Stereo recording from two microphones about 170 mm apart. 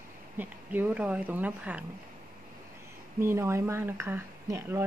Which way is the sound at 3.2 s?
15° right (ahead or behind).